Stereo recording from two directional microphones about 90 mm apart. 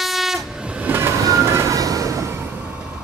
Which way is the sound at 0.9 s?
35° right (ahead or behind).